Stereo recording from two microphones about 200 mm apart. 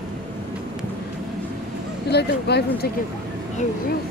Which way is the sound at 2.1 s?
55° left (ahead or behind).